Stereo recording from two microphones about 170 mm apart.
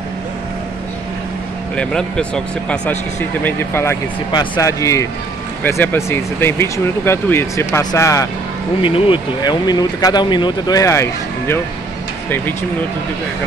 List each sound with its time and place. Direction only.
1.8 s speech: 5° left (ahead or behind)
8.8 s speech: 30° left (ahead or behind); by 11.6 s 15° left (ahead or behind)